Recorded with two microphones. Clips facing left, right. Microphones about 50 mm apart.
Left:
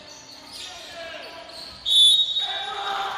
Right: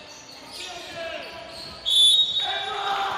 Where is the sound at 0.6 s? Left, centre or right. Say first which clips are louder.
Right 4 dB; right.